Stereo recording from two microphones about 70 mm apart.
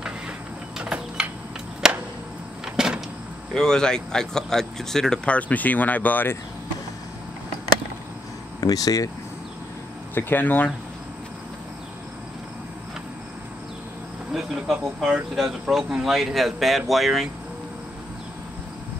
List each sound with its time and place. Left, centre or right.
1.8 s arrow: centre
2.6 s a sound: centre
3.5 s speech: centre; by 6.3 s left
8.5 s speech: left
10.1 s speech: left
14.3 s speech: centre